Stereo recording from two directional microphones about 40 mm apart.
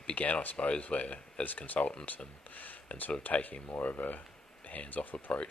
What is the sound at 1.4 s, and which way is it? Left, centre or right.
Speech, left.